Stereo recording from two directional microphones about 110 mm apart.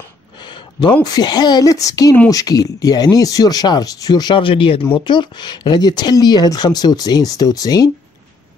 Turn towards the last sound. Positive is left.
turn(degrees=35)  # may be behind; listen again after turning